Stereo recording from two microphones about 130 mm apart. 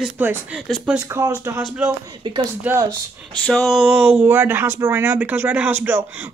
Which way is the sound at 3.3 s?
5° left (ahead or behind).